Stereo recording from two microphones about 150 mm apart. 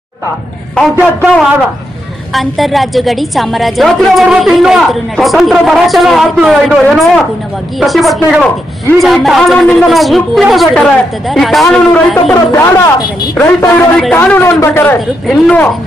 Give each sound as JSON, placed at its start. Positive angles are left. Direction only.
{"t": 2.3, "sound": "a woman's voice", "side_deg": 0}
{"t": 12.4, "sound": "a man's voice", "side_deg": 20}
{"t": 15.0, "sound": "a woman's voice", "side_deg": 0}